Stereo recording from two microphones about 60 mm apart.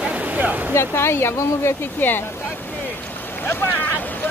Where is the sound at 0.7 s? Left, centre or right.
Left.